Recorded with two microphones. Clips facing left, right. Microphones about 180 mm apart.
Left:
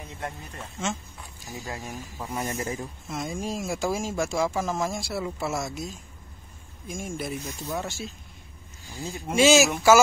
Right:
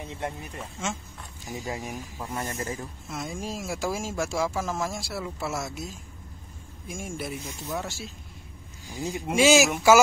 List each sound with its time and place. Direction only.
0.6 s speech: 5° right (ahead or behind)
1.5 s speech: 20° right (ahead or behind)
2.1 s speech: centre (ahead or behind)
2.4 s speech: 20° left (ahead or behind)
3.1 s speech: centre (ahead or behind)
8.9 s speech: 15° right (ahead or behind)